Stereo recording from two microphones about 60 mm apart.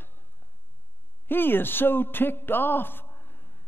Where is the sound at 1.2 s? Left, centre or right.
Left.